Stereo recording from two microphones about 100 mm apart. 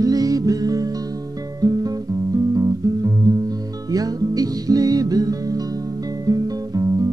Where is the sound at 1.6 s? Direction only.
40° right (ahead or behind).